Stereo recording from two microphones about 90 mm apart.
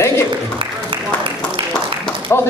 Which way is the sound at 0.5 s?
75° right (ahead or behind).